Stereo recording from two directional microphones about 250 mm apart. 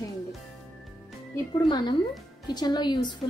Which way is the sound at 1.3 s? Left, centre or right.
Centre.